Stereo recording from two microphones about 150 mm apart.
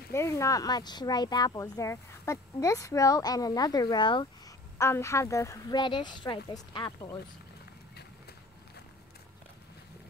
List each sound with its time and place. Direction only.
0.1 s speech: 20° left (ahead or behind)
4.7 s speech: 20° left (ahead or behind)